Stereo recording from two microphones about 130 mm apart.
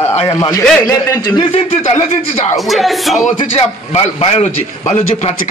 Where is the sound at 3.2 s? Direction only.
55° left (ahead or behind).